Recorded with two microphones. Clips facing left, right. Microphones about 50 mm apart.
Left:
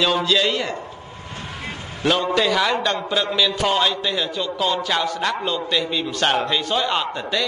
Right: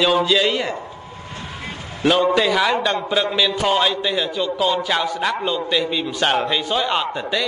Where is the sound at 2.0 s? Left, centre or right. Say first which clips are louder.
Right 3 dB; centre.